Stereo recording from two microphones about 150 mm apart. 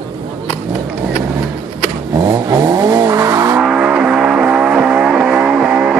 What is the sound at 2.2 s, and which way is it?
Vehicle, 25° right (ahead or behind).